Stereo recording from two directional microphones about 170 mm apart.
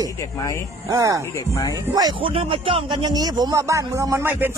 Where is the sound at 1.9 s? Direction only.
25° right (ahead or behind).